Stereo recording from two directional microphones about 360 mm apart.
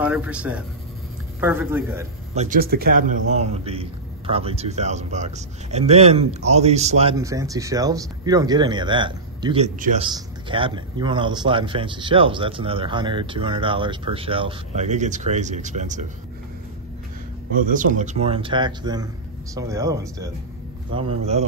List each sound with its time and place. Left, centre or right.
0.0 s speech: centre
2.3 s a man's voice: right
17.7 s a man's voice: right